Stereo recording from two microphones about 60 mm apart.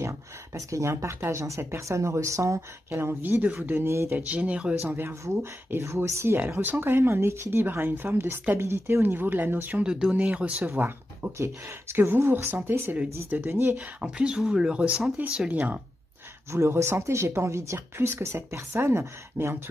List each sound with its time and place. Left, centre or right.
0.6 s speech: right
3.0 s speech: right
3.8 s speech: right
4.3 s speech: right
5.2 s speech: right
6.6 s speech: right
9.8 s speech: centre
11.3 s speech: right
13.7 s speech: centre
16.5 s speech: right
17.7 s speech: right